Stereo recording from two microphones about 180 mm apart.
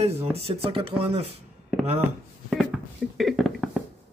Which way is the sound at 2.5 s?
Centre (ahead or behind).